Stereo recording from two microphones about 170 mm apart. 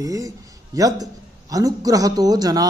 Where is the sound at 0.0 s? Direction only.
20° right (ahead or behind).